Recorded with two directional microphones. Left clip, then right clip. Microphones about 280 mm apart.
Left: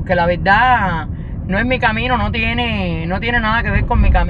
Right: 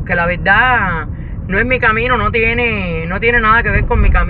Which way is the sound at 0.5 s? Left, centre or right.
Centre.